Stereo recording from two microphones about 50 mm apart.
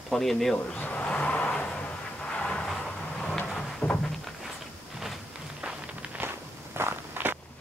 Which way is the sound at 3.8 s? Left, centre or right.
Left.